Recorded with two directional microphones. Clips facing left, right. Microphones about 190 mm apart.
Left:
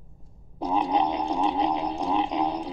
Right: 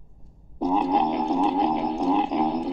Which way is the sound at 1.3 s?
10° right (ahead or behind).